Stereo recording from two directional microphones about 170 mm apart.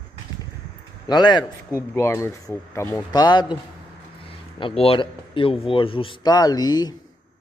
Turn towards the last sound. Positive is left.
turn(degrees=25)  # may be behind; listen again after turning